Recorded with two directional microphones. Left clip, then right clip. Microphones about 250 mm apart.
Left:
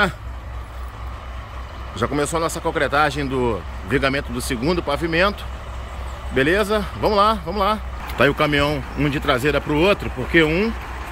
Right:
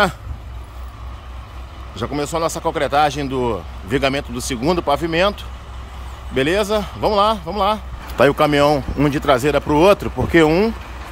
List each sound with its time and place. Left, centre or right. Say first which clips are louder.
2.0 s speech: even; centre